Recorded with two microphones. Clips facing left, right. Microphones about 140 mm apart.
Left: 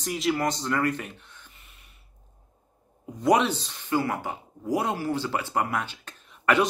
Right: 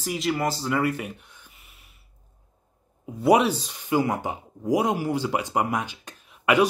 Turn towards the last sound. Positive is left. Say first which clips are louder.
# right 3 dB
turn(degrees=-10)  # may be behind; listen again after turning